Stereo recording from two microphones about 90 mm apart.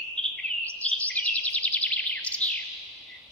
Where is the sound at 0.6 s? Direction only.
15° left (ahead or behind).